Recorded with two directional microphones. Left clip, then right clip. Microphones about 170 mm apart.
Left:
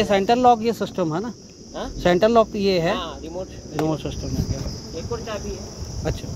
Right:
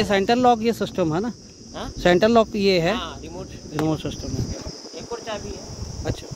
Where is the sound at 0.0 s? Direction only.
25° right (ahead or behind).